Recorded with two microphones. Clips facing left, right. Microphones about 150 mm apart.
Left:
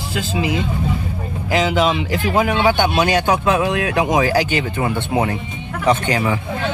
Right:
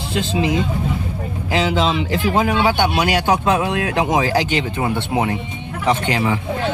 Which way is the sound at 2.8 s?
15° right (ahead or behind).